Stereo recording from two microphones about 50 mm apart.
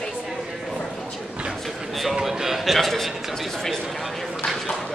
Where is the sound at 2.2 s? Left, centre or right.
Centre.